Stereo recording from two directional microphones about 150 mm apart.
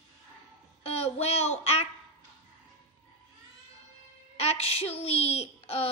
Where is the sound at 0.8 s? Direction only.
40° left (ahead or behind).